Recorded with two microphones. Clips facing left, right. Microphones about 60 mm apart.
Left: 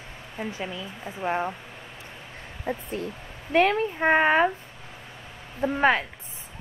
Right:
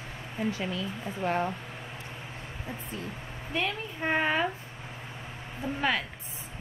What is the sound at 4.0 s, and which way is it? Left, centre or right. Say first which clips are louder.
Speech: left 6 dB; left.